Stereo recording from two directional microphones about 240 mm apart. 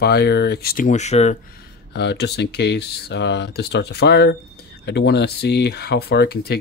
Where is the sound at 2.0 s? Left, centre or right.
Left.